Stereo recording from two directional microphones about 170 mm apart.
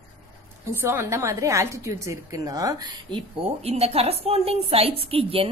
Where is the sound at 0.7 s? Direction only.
15° right (ahead or behind).